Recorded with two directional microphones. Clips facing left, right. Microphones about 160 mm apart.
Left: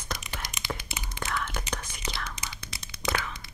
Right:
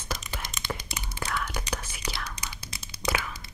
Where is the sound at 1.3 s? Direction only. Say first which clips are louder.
Right 1 dB; 10° right (ahead or behind).